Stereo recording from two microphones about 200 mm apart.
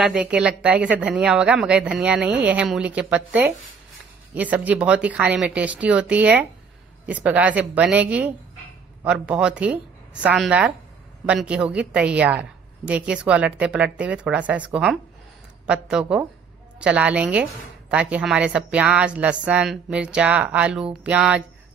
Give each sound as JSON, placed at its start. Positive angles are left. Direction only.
{"t": 0.0, "sound": "a woman's voice", "side_deg": -5}
{"t": 4.3, "sound": "a woman's voice", "side_deg": -5}